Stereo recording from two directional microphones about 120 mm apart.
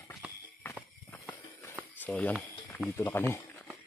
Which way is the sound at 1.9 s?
15° left (ahead or behind).